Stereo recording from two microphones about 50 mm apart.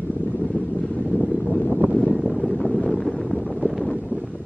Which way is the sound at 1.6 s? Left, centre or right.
Right.